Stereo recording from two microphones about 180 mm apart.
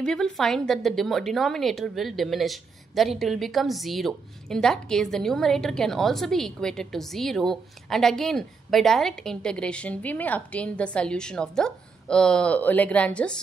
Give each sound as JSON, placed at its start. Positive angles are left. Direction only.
{"t": 0.0, "sound": "a woman's voice", "side_deg": 5}